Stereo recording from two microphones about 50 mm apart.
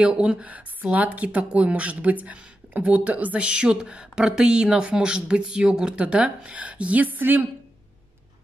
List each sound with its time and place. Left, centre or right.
0.0 s speech: right
0.5 s speech: right